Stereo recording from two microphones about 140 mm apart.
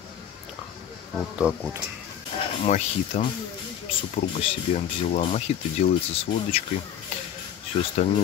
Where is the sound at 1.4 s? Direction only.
10° right (ahead or behind).